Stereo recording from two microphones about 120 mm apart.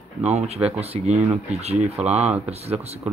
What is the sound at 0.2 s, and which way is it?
Speech, 60° right (ahead or behind).